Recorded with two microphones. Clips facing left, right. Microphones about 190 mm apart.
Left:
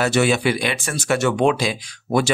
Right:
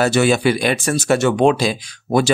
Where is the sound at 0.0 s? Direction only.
40° right (ahead or behind).